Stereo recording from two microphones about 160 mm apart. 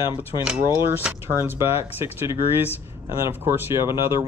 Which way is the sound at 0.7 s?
15° right (ahead or behind).